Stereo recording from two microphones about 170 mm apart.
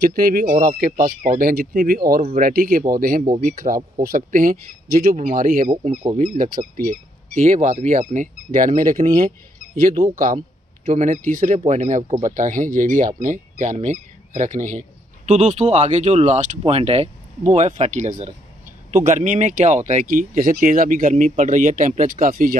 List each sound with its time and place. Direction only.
0.0 s speech: 60° right (ahead or behind)
10.1 s speech: 50° right (ahead or behind)